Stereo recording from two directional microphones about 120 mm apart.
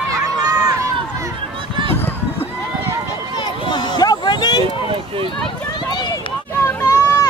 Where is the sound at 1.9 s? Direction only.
20° left (ahead or behind).